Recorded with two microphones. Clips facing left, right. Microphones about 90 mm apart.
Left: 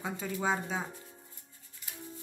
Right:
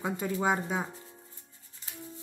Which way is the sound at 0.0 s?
20° right (ahead or behind).